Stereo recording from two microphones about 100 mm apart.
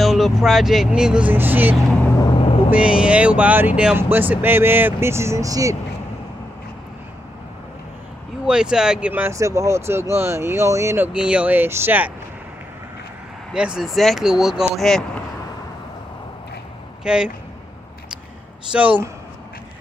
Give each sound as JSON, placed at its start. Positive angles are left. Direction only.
{"t": 0.0, "sound": "speech", "side_deg": 0}
{"t": 2.3, "sound": "vehicle", "side_deg": 65}
{"t": 2.7, "sound": "speech", "side_deg": -10}
{"t": 8.5, "sound": "speech", "side_deg": -5}
{"t": 9.2, "sound": "speech", "side_deg": -30}
{"t": 11.1, "sound": "speech", "side_deg": -10}
{"t": 13.5, "sound": "speech", "side_deg": -5}
{"t": 17.0, "sound": "speech", "side_deg": -10}
{"t": 18.7, "sound": "speech", "side_deg": -15}